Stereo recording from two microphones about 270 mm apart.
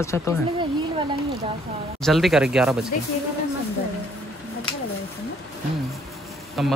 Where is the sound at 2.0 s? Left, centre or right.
Centre.